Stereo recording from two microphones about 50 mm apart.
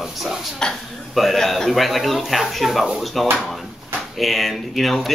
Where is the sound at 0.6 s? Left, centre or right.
Centre.